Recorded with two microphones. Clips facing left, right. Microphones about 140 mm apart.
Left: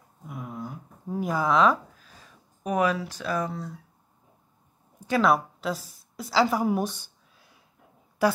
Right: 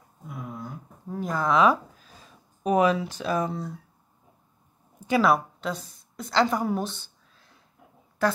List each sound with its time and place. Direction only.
0.6 s a sound: 10° left (ahead or behind)
2.6 s speech: 25° right (ahead or behind)
5.2 s a woman's voice: centre (ahead or behind)